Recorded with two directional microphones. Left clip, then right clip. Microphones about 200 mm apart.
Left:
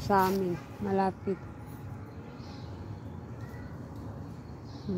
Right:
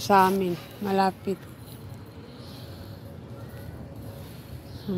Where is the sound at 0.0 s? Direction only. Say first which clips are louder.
Right 7 dB; 15° right (ahead or behind).